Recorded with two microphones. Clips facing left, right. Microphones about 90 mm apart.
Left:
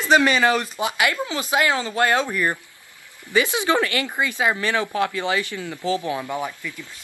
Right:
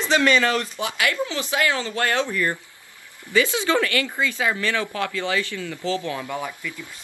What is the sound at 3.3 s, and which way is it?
Speech, 20° left (ahead or behind).